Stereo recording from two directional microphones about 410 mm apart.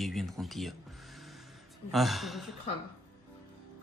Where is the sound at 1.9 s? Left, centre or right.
Centre.